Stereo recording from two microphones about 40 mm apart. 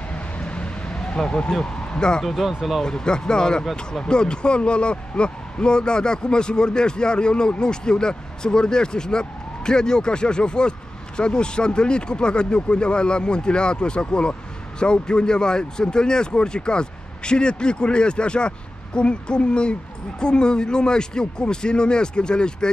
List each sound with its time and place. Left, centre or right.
0.1 s vehicle: left
2.4 s speech: centre
2.8 s a man's voice: centre